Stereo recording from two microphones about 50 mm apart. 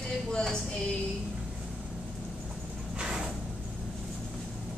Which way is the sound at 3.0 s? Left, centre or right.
Centre.